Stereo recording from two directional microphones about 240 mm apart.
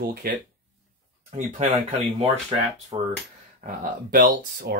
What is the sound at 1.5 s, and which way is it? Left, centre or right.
Speech, right.